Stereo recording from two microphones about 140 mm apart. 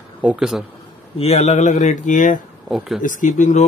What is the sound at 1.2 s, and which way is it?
Speech, 50° left (ahead or behind).